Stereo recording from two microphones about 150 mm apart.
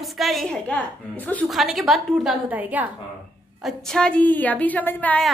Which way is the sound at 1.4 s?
Centre (ahead or behind).